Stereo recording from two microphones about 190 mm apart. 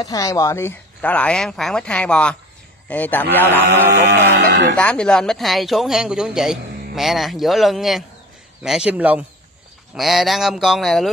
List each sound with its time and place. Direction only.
0.0 s speech: 20° left (ahead or behind)
3.9 s music: 60° right (ahead or behind)
4.7 s speech: 5° left (ahead or behind)